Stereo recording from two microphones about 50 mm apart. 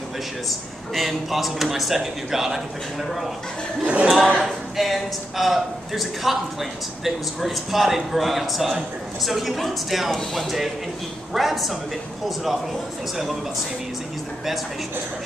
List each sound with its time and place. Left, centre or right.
0.5 s speech: centre
3.8 s speech: right
4.4 s speech: centre